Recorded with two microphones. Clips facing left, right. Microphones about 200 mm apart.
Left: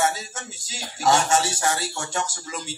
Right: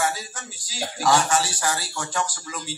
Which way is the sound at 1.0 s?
25° left (ahead or behind).